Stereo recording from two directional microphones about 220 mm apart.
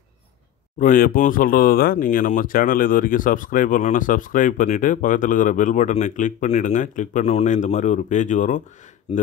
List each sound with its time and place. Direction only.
0.7 s speech: 35° left (ahead or behind)